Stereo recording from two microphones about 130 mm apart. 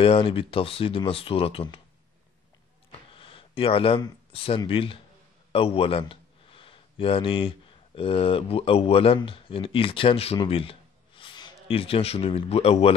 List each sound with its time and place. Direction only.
0.0 s speech: 45° left (ahead or behind)
3.1 s a sound: 45° left (ahead or behind)
4.6 s speech: 40° left (ahead or behind)